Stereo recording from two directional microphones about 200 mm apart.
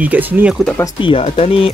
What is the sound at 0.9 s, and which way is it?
Speech, 25° left (ahead or behind).